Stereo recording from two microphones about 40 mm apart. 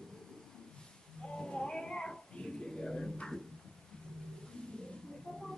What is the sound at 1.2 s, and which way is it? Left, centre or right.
Cat, left.